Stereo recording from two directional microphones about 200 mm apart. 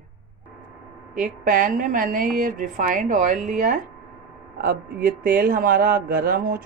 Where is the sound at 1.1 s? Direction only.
40° right (ahead or behind).